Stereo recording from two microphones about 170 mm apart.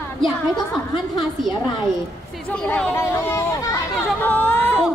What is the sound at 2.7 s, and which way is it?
Speech, 15° left (ahead or behind).